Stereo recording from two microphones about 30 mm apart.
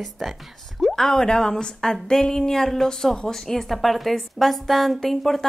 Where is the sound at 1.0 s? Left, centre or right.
Centre.